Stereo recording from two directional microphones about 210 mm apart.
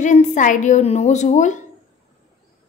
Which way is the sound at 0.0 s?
35° left (ahead or behind).